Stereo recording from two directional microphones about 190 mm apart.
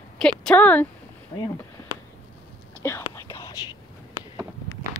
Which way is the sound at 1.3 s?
25° left (ahead or behind).